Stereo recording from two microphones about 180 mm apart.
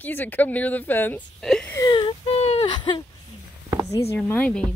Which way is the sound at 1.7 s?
25° left (ahead or behind).